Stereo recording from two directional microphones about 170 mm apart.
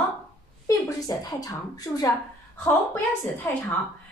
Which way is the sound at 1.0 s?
20° left (ahead or behind).